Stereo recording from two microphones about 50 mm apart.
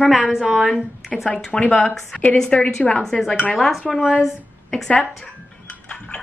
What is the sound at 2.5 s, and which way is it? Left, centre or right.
Speech, left.